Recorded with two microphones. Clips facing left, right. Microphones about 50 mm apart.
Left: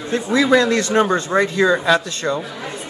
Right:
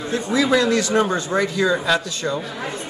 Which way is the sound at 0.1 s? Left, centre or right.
Left.